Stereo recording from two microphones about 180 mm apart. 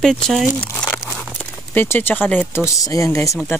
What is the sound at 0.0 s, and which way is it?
Speech, centre (ahead or behind).